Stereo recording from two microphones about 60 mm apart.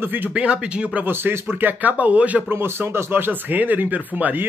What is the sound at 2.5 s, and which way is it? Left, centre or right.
A man's voice, right.